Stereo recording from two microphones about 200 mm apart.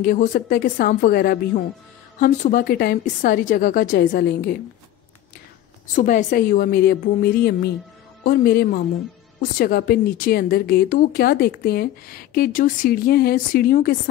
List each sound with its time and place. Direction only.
0.0 s a woman's voice: 45° left (ahead or behind)
5.9 s a woman's voice: 40° left (ahead or behind)